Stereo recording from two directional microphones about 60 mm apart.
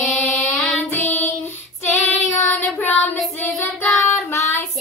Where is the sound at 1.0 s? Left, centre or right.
Left.